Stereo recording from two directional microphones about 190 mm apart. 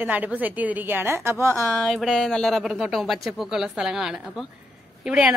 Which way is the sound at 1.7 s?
Centre (ahead or behind).